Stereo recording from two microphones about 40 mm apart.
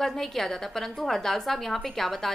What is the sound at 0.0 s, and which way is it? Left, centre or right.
A woman's voice, centre.